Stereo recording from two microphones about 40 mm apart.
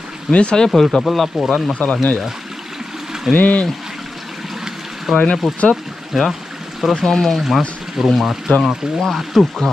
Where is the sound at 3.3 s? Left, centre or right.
Left.